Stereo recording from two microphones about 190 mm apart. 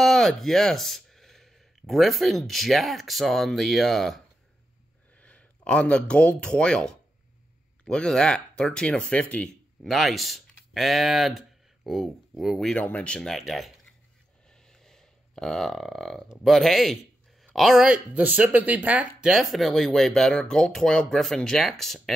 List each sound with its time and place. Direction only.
0.0 s speech: centre (ahead or behind)
5.2 s speech: 5° left (ahead or behind)
14.5 s burping: centre (ahead or behind)
19.5 s speech: centre (ahead or behind)